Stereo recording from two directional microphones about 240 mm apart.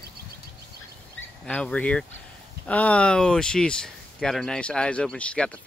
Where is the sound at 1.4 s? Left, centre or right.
Centre.